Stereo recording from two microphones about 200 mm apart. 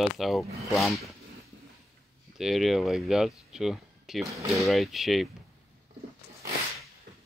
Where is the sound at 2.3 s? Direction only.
Centre (ahead or behind).